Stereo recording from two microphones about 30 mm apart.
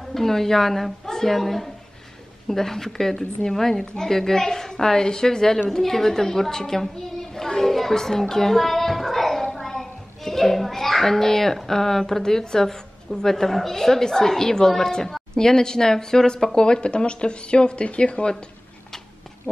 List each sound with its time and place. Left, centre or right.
0.1 s a woman's voice: centre
16.5 s speech: left
19.5 s speech: left